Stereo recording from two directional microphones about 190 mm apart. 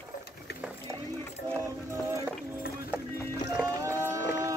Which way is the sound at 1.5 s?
15° right (ahead or behind).